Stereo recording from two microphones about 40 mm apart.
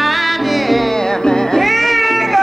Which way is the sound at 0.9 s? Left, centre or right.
Centre.